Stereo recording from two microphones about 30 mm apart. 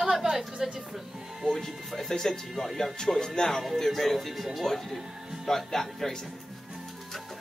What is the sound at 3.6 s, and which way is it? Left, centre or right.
Speech, centre.